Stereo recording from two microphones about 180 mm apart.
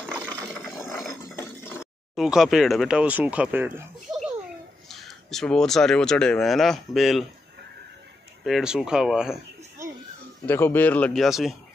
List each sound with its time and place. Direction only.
0.3 s a sound: 10° left (ahead or behind)
0.7 s ratchet: 15° left (ahead or behind)
2.1 s speech: centre (ahead or behind)
8.5 s speech: centre (ahead or behind)
10.4 s speech: 10° left (ahead or behind)